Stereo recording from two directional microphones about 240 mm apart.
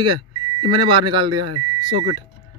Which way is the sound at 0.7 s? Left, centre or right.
Centre.